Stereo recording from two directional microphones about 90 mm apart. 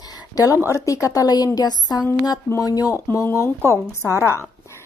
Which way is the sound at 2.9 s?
30° left (ahead or behind).